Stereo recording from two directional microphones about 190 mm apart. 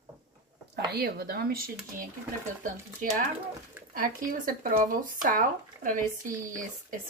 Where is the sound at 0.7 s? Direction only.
55° right (ahead or behind).